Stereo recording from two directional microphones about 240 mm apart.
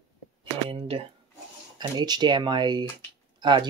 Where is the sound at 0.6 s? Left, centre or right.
Right.